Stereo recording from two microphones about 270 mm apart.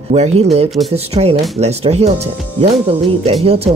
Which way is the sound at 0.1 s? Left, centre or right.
Right.